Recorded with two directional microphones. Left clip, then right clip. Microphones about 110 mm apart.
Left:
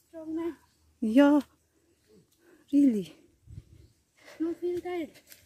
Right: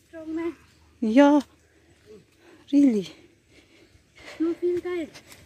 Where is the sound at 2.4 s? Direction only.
20° left (ahead or behind).